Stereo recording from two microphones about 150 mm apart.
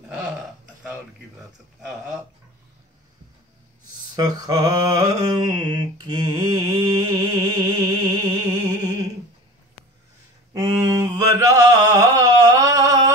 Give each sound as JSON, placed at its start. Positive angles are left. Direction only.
{"t": 4.1, "sound": "a sound", "side_deg": -25}
{"t": 8.2, "sound": "music", "side_deg": -25}
{"t": 10.5, "sound": "mantra", "side_deg": -25}